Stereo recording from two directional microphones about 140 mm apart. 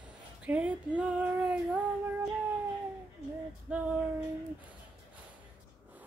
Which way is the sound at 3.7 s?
5° right (ahead or behind).